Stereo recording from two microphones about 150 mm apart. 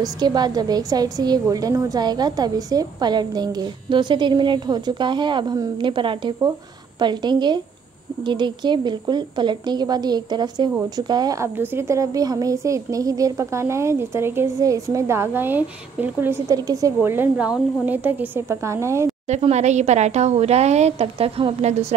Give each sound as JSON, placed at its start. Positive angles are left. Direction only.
{"t": 0.0, "sound": "a woman's voice", "side_deg": -25}
{"t": 19.2, "sound": "speech", "side_deg": -50}